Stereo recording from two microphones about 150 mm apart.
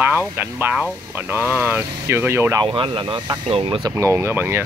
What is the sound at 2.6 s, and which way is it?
Speech, 35° right (ahead or behind).